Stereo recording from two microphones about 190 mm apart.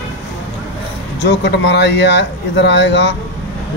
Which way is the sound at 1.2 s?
65° left (ahead or behind).